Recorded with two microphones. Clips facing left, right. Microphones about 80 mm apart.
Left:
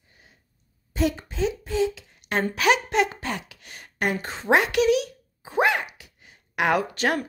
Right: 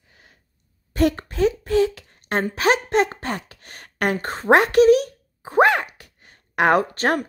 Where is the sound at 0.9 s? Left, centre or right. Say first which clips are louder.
Right 5 dB; right.